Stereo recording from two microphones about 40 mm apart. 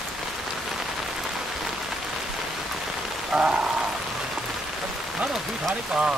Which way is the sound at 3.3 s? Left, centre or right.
Right.